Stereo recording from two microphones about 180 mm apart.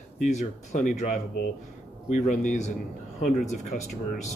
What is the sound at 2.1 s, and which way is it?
Speech, 40° left (ahead or behind).